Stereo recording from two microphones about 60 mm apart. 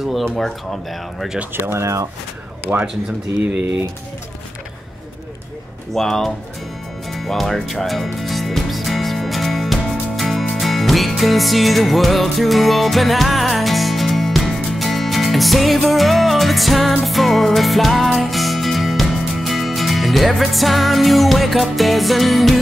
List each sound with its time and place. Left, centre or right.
0.2 s speech: centre
1.5 s speech: right
1.8 s speech: right
2.7 s speech: right
5.9 s speech: centre
7.1 s music: centre